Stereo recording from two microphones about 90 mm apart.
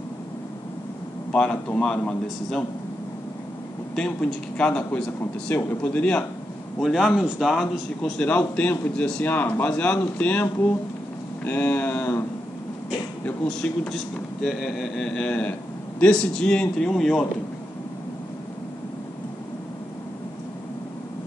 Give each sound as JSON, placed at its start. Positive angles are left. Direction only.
{"t": 1.3, "sound": "a man's voice", "side_deg": 10}
{"t": 3.9, "sound": "a man's voice", "side_deg": 10}
{"t": 5.2, "sound": "a man's voice", "side_deg": 25}
{"t": 6.8, "sound": "a man's voice", "side_deg": 0}
{"t": 8.0, "sound": "a man's voice", "side_deg": 15}
{"t": 13.5, "sound": "a man's voice", "side_deg": 5}